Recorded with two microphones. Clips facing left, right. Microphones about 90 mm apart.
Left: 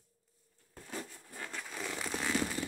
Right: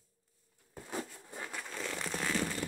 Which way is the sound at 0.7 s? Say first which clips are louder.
Right 3 dB; 20° right (ahead or behind).